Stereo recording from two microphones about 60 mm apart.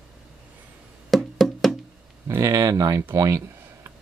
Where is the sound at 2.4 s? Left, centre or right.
Right.